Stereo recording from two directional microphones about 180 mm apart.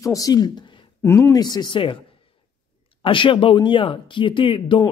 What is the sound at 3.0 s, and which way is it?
Speech, 30° left (ahead or behind).